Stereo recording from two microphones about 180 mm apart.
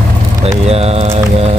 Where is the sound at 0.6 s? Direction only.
35° right (ahead or behind).